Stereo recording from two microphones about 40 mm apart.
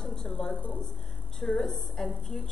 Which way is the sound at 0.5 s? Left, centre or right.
Left.